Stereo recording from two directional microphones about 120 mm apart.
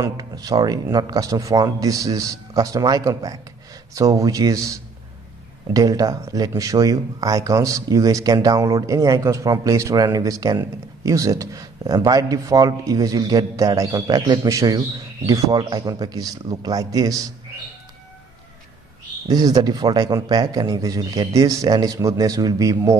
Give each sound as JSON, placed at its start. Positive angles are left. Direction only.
{"t": 0.0, "sound": "speech", "side_deg": -35}
{"t": 19.2, "sound": "speech", "side_deg": -35}